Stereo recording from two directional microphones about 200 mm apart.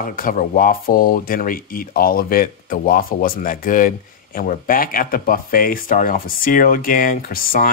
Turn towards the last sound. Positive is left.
turn(degrees=45)  # may be behind; listen again after turning